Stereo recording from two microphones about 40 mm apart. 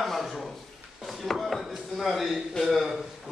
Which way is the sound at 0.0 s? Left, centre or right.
Centre.